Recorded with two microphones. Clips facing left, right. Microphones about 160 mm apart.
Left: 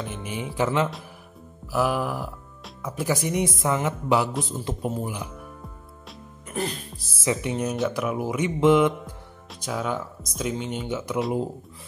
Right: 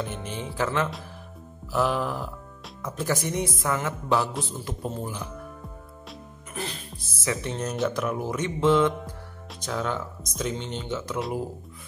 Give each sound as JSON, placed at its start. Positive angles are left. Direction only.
{"t": 0.0, "sound": "speech", "side_deg": 5}
{"t": 1.7, "sound": "speech", "side_deg": 5}
{"t": 6.5, "sound": "speech", "side_deg": 35}
{"t": 7.2, "sound": "speech", "side_deg": 10}